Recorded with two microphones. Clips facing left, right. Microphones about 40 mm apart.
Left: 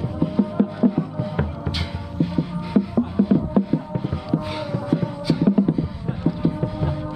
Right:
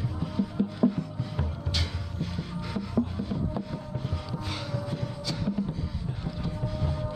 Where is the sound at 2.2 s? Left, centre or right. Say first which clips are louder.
Left 13 dB; centre.